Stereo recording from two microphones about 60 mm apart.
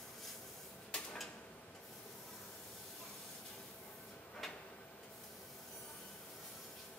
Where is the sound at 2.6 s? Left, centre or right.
Centre.